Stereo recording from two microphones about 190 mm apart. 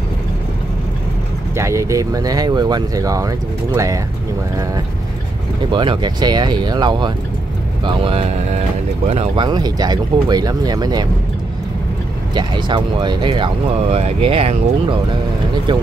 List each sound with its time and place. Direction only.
1.6 s speech: 15° right (ahead or behind)
5.7 s speech: 25° right (ahead or behind)
12.4 s speech: 25° right (ahead or behind)